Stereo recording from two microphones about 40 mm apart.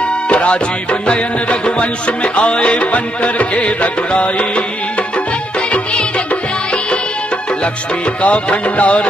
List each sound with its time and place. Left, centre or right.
1.0 s music: left
8.2 s music: left